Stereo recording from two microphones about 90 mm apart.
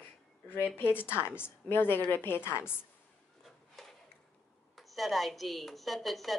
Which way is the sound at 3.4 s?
Centre (ahead or behind).